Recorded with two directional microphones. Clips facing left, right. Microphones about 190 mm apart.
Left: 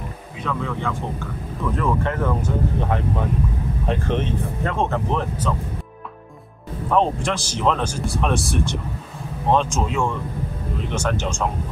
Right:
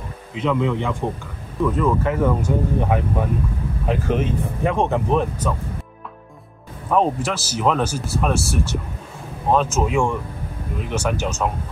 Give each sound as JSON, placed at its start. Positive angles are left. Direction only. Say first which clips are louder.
{"t": 0.4, "sound": "speech", "louder": "right 6 dB", "side_deg": -20}
{"t": 6.9, "sound": "speech", "louder": "right 1 dB", "side_deg": -5}